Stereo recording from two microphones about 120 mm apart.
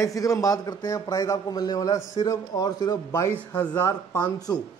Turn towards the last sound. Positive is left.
turn(degrees=35)  # may be behind; listen again after turning